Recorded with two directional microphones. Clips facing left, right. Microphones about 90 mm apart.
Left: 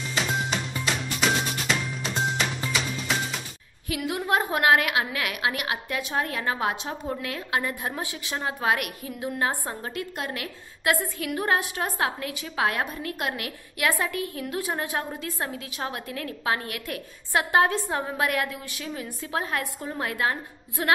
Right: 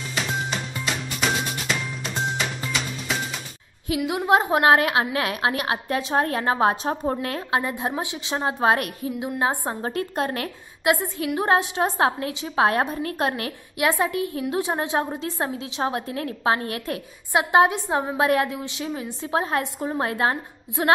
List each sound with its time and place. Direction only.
0.1 s music: centre (ahead or behind)
3.9 s a woman's voice: 20° right (ahead or behind)
7.6 s a woman's voice: 20° right (ahead or behind)
9.2 s a woman's voice: 20° right (ahead or behind)
9.8 s a woman's voice: 35° right (ahead or behind)
10.8 s a woman's voice: 20° right (ahead or behind)
13.7 s a woman's voice: 20° right (ahead or behind)
17.3 s a woman's voice: 20° right (ahead or behind)
20.8 s a woman's voice: 20° right (ahead or behind)